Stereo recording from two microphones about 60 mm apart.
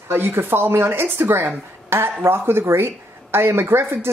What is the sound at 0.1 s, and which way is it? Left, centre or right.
Speech, right.